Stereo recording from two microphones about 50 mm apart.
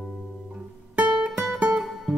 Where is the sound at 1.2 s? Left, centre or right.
Right.